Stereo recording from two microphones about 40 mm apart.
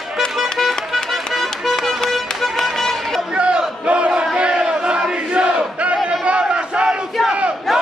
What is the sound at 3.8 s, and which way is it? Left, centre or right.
Battle cry, right.